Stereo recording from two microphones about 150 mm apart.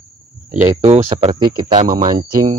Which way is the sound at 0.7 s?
50° right (ahead or behind).